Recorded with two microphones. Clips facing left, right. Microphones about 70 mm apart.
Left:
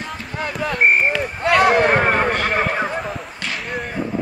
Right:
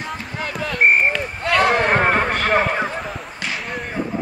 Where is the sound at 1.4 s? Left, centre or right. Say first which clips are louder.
Left 3 dB; centre.